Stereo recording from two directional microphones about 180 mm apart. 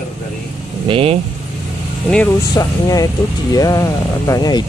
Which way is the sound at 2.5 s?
20° left (ahead or behind).